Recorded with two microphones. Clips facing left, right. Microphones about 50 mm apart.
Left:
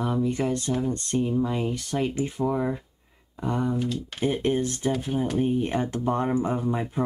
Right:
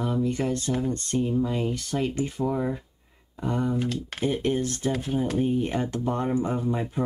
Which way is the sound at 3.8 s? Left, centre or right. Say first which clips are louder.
Even; right.